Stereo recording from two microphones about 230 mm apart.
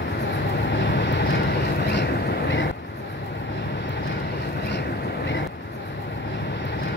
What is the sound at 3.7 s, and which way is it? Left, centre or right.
Vehicle, left.